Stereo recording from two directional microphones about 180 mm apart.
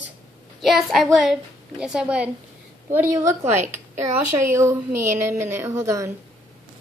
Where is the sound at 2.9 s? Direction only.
15° right (ahead or behind).